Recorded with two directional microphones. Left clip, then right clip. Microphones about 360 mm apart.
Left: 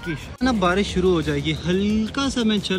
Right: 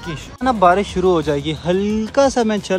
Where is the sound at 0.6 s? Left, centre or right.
Centre.